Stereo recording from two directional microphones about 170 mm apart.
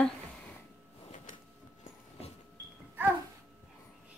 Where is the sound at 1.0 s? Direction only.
45° left (ahead or behind).